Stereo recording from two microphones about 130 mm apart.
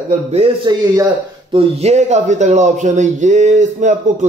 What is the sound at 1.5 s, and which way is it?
Speech, 55° right (ahead or behind).